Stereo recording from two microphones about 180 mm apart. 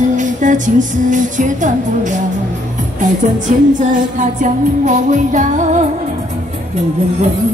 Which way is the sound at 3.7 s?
45° right (ahead or behind).